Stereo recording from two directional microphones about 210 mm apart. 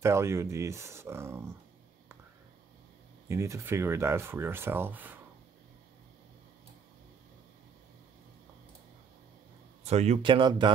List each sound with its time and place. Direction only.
0.0 s speech: 15° right (ahead or behind)
3.3 s speech: 15° right (ahead or behind)
9.8 s speech: 30° right (ahead or behind)